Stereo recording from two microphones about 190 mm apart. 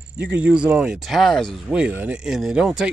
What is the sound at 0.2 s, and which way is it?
Speech, 5° right (ahead or behind).